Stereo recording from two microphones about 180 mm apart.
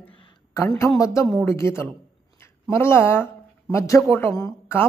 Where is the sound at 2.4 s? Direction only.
15° left (ahead or behind).